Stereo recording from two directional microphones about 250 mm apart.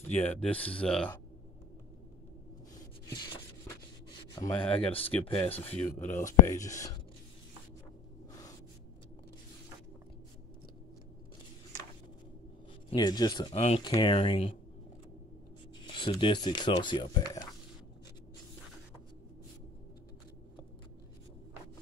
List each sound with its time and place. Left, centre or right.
0.2 s speech: centre
3.1 s a sound: centre
4.4 s speech: centre
5.4 s speech: centre
5.9 s speech: left
6.4 s speech: centre
12.9 s speech: centre
15.8 s speech: centre